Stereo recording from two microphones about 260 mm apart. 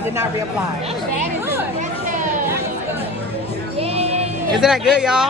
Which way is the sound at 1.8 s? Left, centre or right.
Right.